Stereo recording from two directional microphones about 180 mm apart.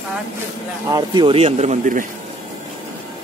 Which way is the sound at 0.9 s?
25° right (ahead or behind).